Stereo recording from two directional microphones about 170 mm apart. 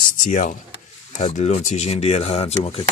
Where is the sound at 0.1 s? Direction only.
50° left (ahead or behind).